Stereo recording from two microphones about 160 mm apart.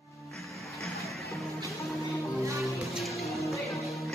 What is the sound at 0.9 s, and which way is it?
Music, centre (ahead or behind).